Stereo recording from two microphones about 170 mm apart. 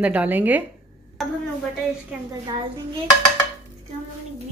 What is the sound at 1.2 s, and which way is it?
A woman's voice, centre (ahead or behind).